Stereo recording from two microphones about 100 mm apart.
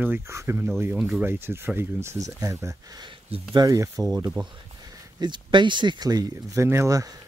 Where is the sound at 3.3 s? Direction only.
75° right (ahead or behind).